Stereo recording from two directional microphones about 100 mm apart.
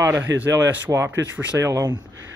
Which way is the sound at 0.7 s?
25° right (ahead or behind).